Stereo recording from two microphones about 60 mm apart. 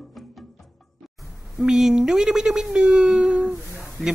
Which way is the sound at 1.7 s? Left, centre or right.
Centre.